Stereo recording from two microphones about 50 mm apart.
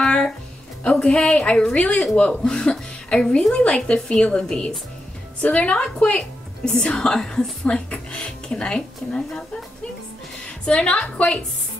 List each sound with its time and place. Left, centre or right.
0.0 s music: centre
0.8 s a woman's voice: centre
10.4 s a woman's voice: left